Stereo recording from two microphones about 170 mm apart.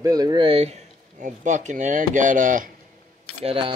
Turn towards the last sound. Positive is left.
turn(degrees=-30)  # may be behind; listen again after turning